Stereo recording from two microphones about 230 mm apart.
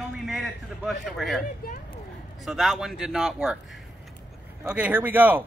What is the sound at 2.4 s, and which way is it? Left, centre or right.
Speech, centre.